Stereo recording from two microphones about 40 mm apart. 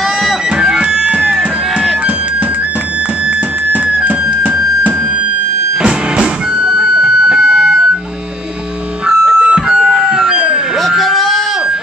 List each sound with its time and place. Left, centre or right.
0.6 s music: right
1.2 s music: centre
4.0 s music: right
5.8 s music: right
9.0 s music: centre
11.0 s a sound: centre